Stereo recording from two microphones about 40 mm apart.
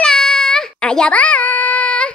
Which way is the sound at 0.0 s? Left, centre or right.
Centre.